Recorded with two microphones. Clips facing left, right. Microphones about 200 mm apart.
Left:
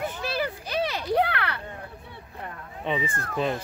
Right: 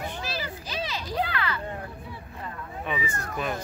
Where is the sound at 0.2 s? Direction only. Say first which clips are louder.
Left 5 dB; 60° left (ahead or behind).